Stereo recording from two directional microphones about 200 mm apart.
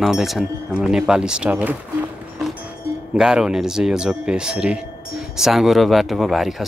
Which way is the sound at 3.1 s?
5° right (ahead or behind).